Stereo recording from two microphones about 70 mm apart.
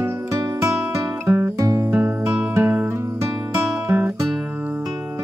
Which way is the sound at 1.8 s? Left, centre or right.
Right.